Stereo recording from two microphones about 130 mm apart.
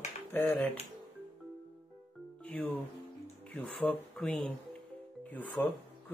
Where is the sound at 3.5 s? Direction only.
10° left (ahead or behind).